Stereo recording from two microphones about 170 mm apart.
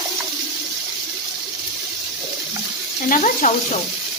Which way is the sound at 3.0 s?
50° left (ahead or behind).